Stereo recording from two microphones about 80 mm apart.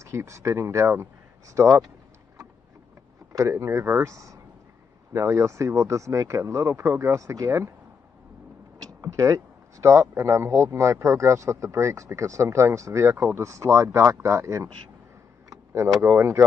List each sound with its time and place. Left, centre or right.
0.0 s speech: right
3.3 s speech: right
9.0 s speech: right